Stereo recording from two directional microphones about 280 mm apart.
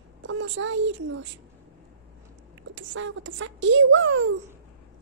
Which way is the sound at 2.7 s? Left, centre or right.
Right.